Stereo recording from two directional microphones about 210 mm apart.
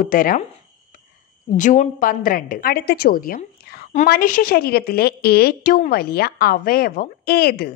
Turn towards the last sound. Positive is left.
turn(degrees=45)  # may be behind; listen again after turning